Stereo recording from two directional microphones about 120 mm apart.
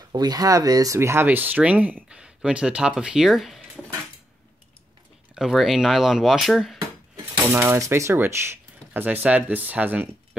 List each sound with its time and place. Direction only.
0.1 s speech: 35° right (ahead or behind); by 3.8 s centre (ahead or behind)
5.3 s speech: centre (ahead or behind)
7.4 s speech: 20° right (ahead or behind)